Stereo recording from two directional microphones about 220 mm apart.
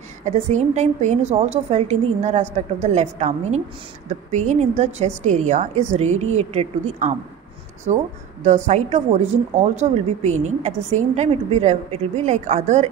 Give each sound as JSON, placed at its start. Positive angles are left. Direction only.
{"t": 0.2, "sound": "speech", "side_deg": -30}
{"t": 8.5, "sound": "speech", "side_deg": -30}